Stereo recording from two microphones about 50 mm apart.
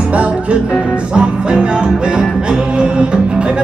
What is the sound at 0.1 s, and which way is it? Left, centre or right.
Music, right.